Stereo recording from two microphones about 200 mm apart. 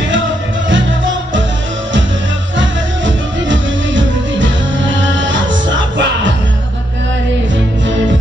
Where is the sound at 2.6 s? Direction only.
70° right (ahead or behind).